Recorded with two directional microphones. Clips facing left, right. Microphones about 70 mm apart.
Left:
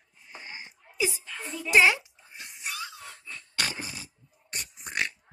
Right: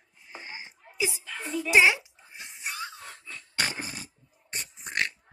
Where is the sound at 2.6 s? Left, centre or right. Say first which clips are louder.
Right 1 dB; right.